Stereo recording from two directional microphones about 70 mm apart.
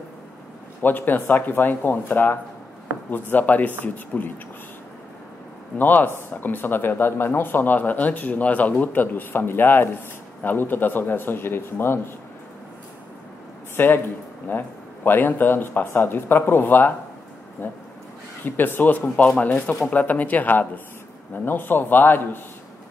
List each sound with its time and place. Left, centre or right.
0.8 s speech: left
5.8 s speech: left
13.7 s speech: left
18.4 s speech: left